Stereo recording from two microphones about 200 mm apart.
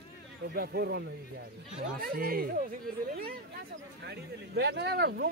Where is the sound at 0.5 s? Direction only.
50° right (ahead or behind).